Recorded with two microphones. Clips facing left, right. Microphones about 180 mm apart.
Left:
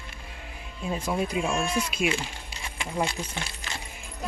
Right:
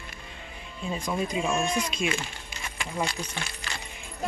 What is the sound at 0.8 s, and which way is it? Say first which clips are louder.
Speech: left 1 dB; 5° left (ahead or behind).